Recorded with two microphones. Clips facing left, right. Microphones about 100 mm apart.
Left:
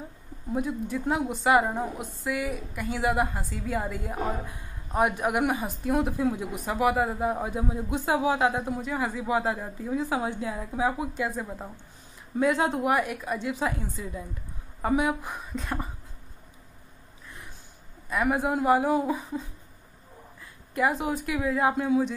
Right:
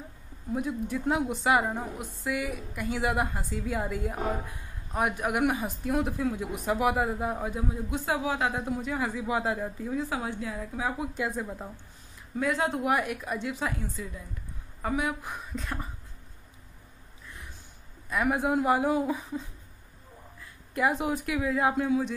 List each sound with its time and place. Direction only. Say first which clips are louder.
0.7 s a woman's voice: right 2 dB; centre (ahead or behind)
4.9 s a woman's voice: left 3 dB; 10° left (ahead or behind)
6.7 s a woman's voice: left 2 dB; centre (ahead or behind); by 12.8 s 15° left (ahead or behind)
12.8 s a woman's voice: left 2 dB; centre (ahead or behind)
18.1 s a woman's voice: left 1 dB; centre (ahead or behind)
20.7 s a woman's voice: left 1 dB; centre (ahead or behind)